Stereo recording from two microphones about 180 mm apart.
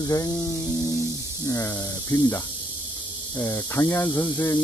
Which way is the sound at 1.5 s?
15° left (ahead or behind).